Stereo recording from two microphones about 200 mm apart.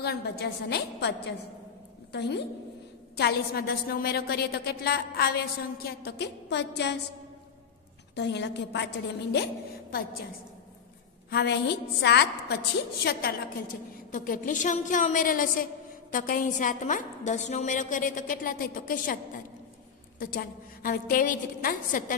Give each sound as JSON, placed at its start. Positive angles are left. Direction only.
{"t": 0.0, "sound": "a woman's voice", "side_deg": 55}
{"t": 8.1, "sound": "a woman's voice", "side_deg": 60}
{"t": 11.2, "sound": "a woman's voice", "side_deg": 60}
{"t": 14.1, "sound": "a woman's voice", "side_deg": 45}